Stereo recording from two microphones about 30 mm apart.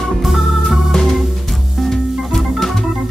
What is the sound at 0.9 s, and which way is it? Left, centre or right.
Music, centre.